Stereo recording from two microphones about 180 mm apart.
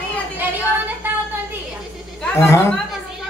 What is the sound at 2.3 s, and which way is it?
Speech, 15° left (ahead or behind).